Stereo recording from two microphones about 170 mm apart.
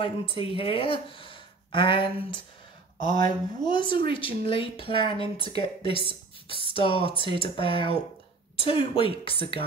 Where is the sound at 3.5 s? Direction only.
25° left (ahead or behind).